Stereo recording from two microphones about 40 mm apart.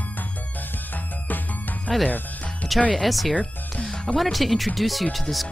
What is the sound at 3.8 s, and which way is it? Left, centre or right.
Music, centre.